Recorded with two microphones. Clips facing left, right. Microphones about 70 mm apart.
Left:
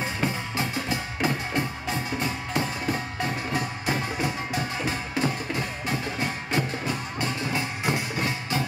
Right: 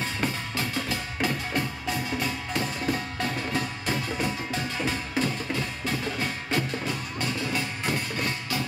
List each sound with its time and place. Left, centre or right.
0.0 s music: left